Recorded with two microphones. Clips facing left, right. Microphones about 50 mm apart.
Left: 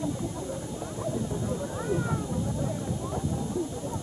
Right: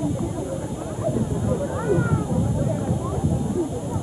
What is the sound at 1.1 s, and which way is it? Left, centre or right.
Vehicle, centre.